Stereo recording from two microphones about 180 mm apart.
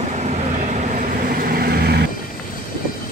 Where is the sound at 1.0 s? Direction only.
55° right (ahead or behind).